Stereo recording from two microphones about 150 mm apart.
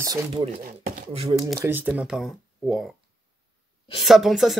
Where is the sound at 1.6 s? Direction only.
10° right (ahead or behind).